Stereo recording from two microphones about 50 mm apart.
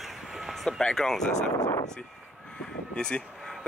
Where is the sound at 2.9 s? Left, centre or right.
Centre.